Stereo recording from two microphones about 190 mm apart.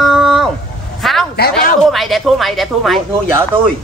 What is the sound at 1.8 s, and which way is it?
A woman's voice, centre (ahead or behind).